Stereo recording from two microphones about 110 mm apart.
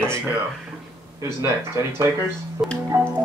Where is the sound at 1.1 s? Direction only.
25° right (ahead or behind).